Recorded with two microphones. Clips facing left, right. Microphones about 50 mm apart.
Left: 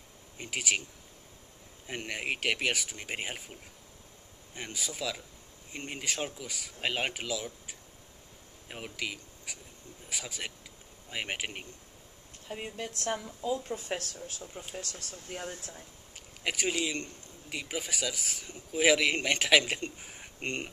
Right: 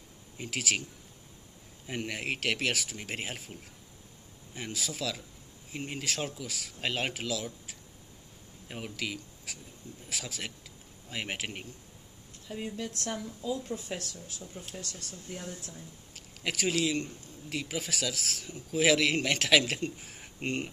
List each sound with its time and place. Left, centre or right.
0.4 s speech: centre
1.9 s speech: centre
4.6 s speech: centre
12.4 s speech: left
13.7 s speech: left
14.4 s speech: left
14.8 s speech: left
16.4 s speech: centre